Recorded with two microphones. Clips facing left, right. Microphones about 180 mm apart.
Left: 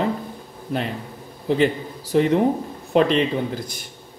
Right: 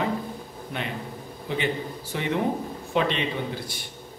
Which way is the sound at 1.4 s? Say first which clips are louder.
Left 8 dB; 40° left (ahead or behind).